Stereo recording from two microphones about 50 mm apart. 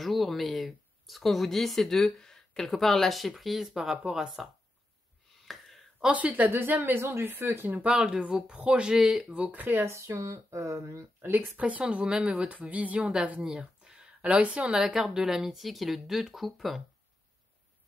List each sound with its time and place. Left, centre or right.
0.0 s speech: centre
5.5 s a sound: centre
6.0 s a woman's voice: right
6.5 s speech: right
7.0 s speech: right
7.9 s speech: centre
8.5 s a woman's voice: right
9.0 s speech: centre
9.5 s a woman's voice: right
9.8 s speech: right
11.1 s speech: right
11.5 s a woman's voice: right
13.8 s a sound: right
14.8 s speech: centre